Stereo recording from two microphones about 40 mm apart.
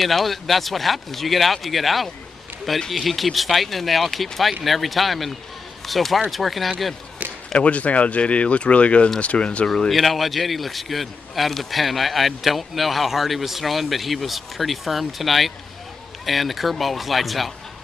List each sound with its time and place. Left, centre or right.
0.0 s a man's voice: centre
7.5 s speech: left
9.8 s a man's voice: centre